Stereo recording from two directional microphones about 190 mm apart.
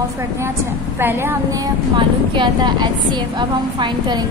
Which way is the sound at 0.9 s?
10° right (ahead or behind).